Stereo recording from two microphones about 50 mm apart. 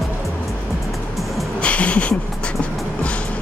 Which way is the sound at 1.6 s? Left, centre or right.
Left.